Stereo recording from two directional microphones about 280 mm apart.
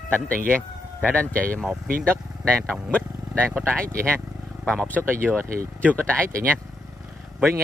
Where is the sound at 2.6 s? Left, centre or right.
Centre.